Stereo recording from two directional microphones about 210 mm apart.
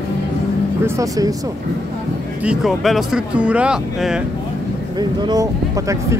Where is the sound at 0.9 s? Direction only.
15° right (ahead or behind).